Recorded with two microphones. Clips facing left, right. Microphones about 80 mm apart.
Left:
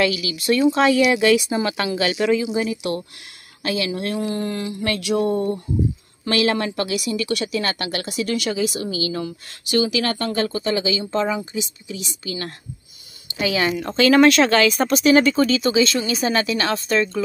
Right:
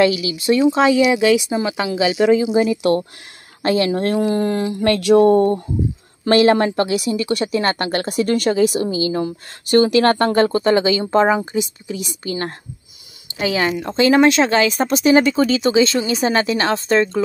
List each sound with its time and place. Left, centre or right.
0.0 s speech: right
2.5 s a woman's voice: right
8.8 s speech: right
9.7 s speech: right
13.4 s speech: right